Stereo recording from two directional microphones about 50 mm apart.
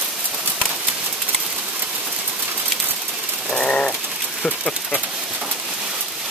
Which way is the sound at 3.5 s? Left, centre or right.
Left.